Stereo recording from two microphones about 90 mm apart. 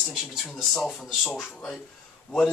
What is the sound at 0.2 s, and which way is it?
Speech, 5° right (ahead or behind).